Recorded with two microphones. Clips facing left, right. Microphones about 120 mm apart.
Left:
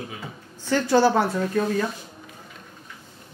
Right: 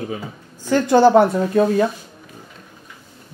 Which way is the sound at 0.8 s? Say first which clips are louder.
Right 7 dB; 15° right (ahead or behind).